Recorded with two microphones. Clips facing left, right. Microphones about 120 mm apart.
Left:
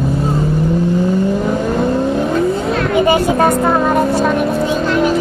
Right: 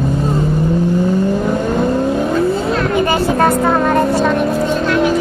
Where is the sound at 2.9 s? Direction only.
20° left (ahead or behind).